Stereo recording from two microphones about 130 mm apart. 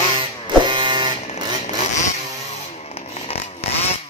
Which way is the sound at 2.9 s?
50° left (ahead or behind).